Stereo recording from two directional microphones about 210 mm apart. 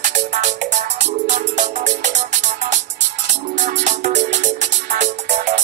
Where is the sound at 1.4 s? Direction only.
35° right (ahead or behind).